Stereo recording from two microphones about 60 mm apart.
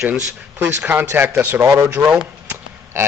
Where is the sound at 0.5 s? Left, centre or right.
Right.